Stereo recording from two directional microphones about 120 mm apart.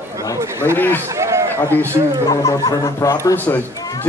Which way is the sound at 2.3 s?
30° left (ahead or behind).